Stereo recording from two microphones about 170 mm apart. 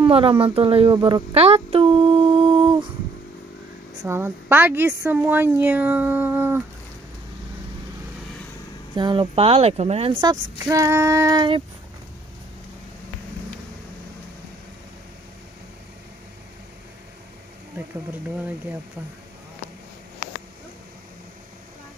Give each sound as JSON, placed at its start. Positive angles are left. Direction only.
{"t": 0.0, "sound": "a sound", "side_deg": -30}
{"t": 4.0, "sound": "a woman's voice", "side_deg": -15}
{"t": 8.9, "sound": "speech", "side_deg": -30}
{"t": 10.6, "sound": "female singing", "side_deg": -20}